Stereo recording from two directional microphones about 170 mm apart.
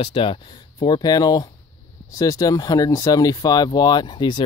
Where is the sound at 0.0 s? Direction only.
30° left (ahead or behind).